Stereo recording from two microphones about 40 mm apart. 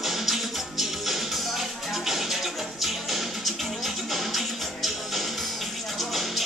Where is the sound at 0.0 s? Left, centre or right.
Centre.